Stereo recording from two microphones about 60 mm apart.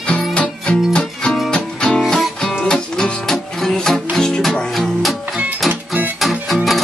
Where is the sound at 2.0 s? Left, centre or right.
Centre.